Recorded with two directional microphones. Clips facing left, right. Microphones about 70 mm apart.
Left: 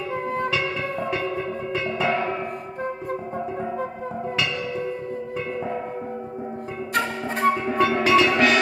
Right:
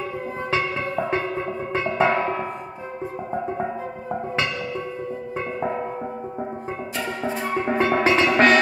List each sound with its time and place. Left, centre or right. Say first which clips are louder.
1.7 s music: right 4 dB; right
7.7 s music: right 2 dB; right